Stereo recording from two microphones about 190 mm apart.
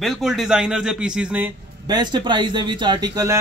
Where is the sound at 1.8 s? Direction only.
20° right (ahead or behind).